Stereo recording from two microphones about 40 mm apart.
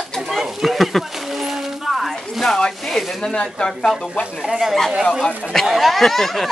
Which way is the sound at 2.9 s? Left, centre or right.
Centre.